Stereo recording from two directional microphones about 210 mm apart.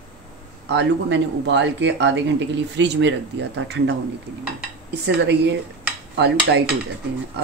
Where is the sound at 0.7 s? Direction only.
55° right (ahead or behind).